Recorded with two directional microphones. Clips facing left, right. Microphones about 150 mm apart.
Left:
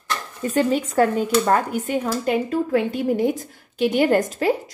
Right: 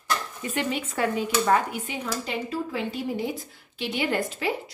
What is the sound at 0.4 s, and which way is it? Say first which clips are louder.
A woman's voice: left 8 dB; 40° left (ahead or behind).